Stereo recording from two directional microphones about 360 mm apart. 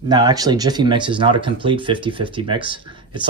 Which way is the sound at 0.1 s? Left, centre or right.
Centre.